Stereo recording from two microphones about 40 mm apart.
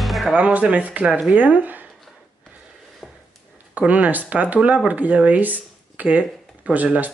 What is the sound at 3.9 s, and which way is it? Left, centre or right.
Speech, right.